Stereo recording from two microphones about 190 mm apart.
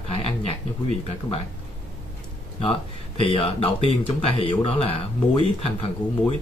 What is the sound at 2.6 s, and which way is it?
Speech, 30° left (ahead or behind).